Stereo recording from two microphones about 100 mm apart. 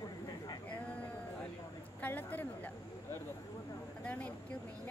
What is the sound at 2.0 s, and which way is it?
A woman's voice, 15° left (ahead or behind).